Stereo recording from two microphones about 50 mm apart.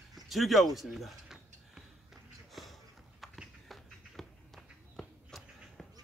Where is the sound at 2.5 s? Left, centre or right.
Centre.